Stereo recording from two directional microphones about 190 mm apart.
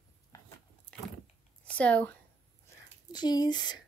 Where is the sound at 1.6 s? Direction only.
5° left (ahead or behind).